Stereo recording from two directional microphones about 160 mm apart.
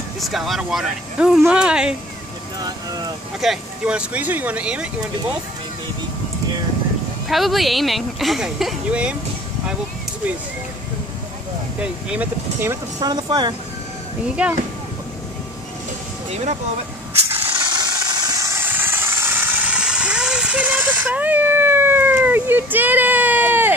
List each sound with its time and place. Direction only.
0.2 s speech: centre (ahead or behind)
2.6 s speech: 25° right (ahead or behind)
3.3 s speech: 5° right (ahead or behind)
7.2 s speech: centre (ahead or behind)
11.8 s speech: 10° right (ahead or behind)
13.0 s speech: 25° right (ahead or behind)
14.4 s speech: 10° right (ahead or behind)
16.3 s speech: 45° right (ahead or behind)
17.5 s vehicle: 30° right (ahead or behind); by 23.7 s 10° right (ahead or behind)